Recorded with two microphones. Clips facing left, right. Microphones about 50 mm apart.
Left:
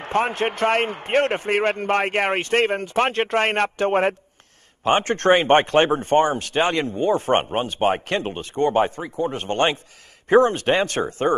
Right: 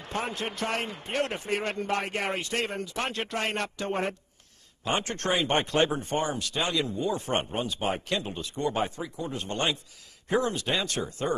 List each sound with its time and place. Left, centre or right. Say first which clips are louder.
0.0 s speech: left 11 dB; left